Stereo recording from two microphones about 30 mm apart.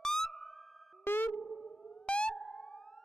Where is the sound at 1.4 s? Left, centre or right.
Centre.